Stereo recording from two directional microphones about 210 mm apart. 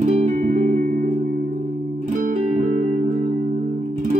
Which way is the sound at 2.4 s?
35° right (ahead or behind).